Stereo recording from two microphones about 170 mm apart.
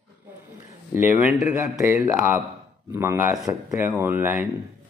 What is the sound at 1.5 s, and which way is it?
Speech, 15° right (ahead or behind).